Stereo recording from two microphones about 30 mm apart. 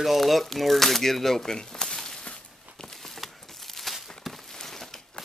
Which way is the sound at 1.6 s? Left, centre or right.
Centre.